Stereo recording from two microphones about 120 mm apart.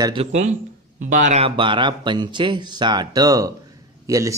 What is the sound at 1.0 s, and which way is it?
Speech, 90° right.